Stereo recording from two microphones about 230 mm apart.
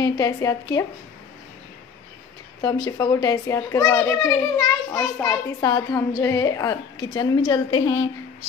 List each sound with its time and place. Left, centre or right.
0.0 s a woman's voice: centre
2.6 s a woman's voice: centre